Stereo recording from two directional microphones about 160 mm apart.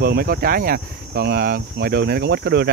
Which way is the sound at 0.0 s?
75° right (ahead or behind).